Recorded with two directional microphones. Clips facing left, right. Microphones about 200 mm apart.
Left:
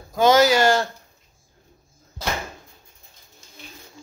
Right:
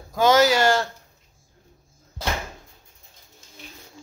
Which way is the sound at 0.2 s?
15° left (ahead or behind).